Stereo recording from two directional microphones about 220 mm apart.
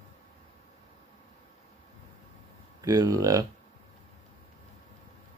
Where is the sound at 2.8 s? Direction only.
15° right (ahead or behind).